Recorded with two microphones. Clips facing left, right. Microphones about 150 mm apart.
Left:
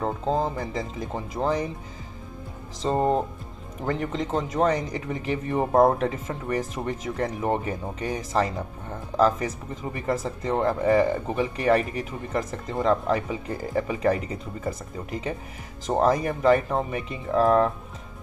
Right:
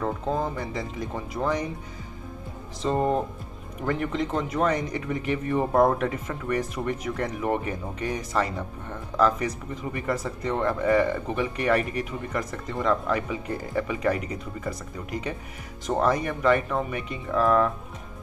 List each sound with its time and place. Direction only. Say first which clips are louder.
0.0 s speech: left 2 dB; 25° left (ahead or behind)
2.8 s speech: left 1 dB; 30° left (ahead or behind)
15.9 s speech: left 2 dB; 35° left (ahead or behind)